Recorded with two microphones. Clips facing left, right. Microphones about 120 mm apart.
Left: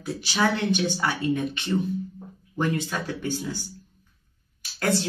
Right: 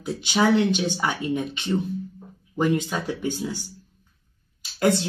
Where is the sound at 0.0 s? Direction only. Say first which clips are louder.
Right 3 dB; 20° right (ahead or behind).